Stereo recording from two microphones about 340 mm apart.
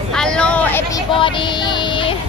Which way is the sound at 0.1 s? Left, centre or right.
Centre.